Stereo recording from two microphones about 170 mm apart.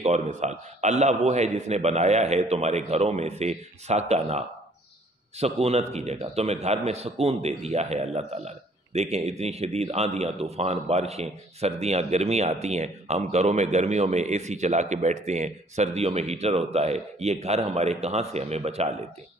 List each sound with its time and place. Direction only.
0.0 s a man's voice: 40° right (ahead or behind)